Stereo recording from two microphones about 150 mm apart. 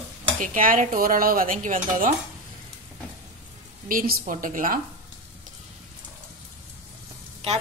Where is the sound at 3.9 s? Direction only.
65° right (ahead or behind).